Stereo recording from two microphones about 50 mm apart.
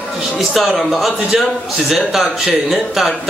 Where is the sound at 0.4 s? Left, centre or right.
Centre.